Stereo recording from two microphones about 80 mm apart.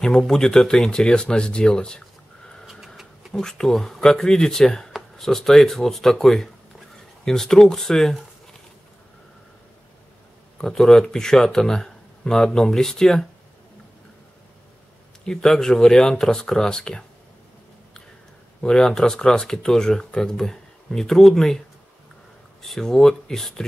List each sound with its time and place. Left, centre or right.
0.0 s speech: centre
2.6 s vehicle: centre
3.3 s speech: centre
10.6 s speech: centre
15.2 s speech: centre
18.6 s speech: centre